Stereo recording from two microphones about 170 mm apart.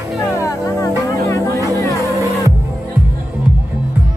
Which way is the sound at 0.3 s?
15° left (ahead or behind).